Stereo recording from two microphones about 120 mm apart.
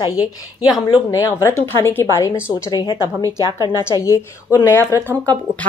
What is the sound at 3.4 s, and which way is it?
Speech, 35° right (ahead or behind).